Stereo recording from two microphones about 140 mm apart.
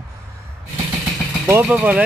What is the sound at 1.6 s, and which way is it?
Mantra, 10° right (ahead or behind).